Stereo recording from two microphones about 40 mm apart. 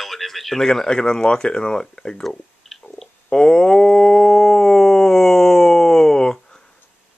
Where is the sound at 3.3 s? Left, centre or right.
Centre.